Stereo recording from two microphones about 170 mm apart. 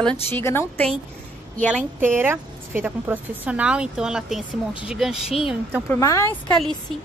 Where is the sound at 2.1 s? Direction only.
15° right (ahead or behind).